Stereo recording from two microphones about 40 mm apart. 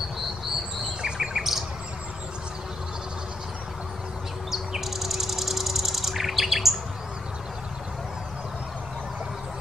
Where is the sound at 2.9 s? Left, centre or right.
Centre.